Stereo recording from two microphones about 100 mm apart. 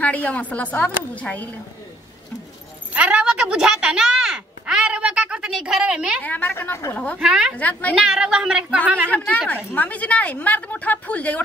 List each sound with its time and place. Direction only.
0.0 s a woman's voice: 15° left (ahead or behind)
2.9 s speech: 10° right (ahead or behind)
6.2 s a woman's voice: 15° left (ahead or behind)
7.2 s a woman's voice: 10° right (ahead or behind)
7.5 s a woman's voice: 15° left (ahead or behind)
7.9 s a woman's voice: 5° right (ahead or behind)
9.8 s a woman's voice: 15° left (ahead or behind)